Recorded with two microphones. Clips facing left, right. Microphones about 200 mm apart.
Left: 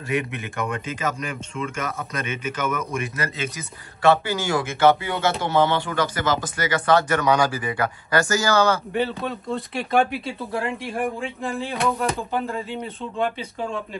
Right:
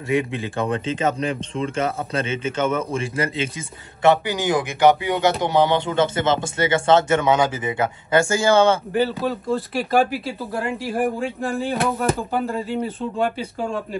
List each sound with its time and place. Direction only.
0.1 s speech: 25° right (ahead or behind)
8.9 s speech: centre (ahead or behind)